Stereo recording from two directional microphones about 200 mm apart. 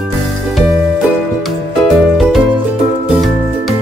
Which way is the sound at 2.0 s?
Centre (ahead or behind).